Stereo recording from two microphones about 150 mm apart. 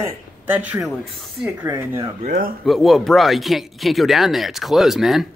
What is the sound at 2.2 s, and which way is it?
Speech, 90° right.